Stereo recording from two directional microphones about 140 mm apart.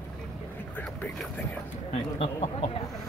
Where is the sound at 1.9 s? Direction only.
45° left (ahead or behind).